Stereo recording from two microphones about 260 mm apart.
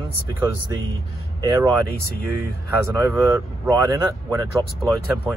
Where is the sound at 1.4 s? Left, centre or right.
Centre.